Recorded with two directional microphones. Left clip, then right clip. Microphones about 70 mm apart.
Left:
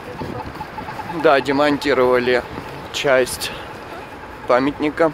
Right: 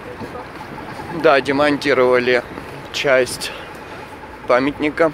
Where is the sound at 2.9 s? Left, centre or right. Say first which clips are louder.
Right 1 dB; left.